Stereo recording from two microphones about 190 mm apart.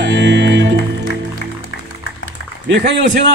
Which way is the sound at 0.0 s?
65° right (ahead or behind).